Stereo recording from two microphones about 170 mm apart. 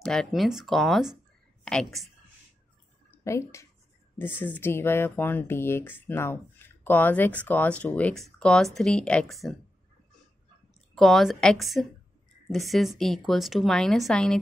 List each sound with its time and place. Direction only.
0.0 s a woman's voice: 5° left (ahead or behind)
3.1 s speech: 15° left (ahead or behind); by 9.6 s centre (ahead or behind)
11.0 s speech: centre (ahead or behind)